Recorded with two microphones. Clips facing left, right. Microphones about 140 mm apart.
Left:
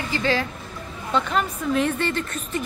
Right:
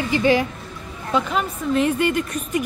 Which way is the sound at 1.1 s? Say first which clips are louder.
Right 1 dB; 5° right (ahead or behind).